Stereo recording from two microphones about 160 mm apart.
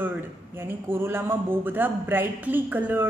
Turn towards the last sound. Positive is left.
turn(degrees=-10)  # may be behind; listen again after turning